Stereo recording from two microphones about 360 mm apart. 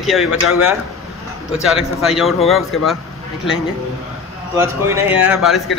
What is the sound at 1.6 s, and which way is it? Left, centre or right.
A man's voice, centre.